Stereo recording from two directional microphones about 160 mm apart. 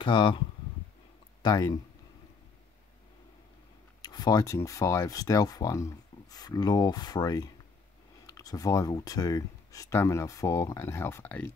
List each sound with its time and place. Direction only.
0.0 s speech: 30° left (ahead or behind)
1.4 s speech: 25° left (ahead or behind)
4.0 s speech: 25° left (ahead or behind)